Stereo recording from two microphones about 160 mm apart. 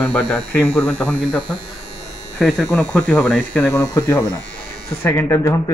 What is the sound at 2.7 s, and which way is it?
Speech, 10° left (ahead or behind).